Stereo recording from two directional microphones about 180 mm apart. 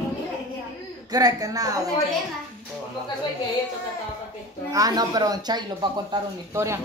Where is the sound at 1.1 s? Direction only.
20° right (ahead or behind).